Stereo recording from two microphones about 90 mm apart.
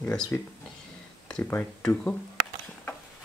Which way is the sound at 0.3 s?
25° left (ahead or behind).